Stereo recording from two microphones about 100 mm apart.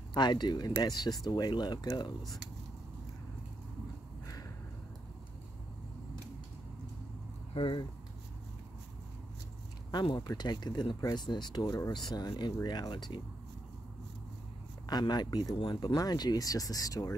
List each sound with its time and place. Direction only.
0.1 s speech: 50° left (ahead or behind)
7.5 s speech: 60° left (ahead or behind)
10.2 s speech: 45° left (ahead or behind)
14.9 s speech: 45° left (ahead or behind)